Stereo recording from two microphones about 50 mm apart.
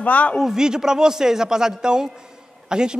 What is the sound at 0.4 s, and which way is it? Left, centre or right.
Speech, centre.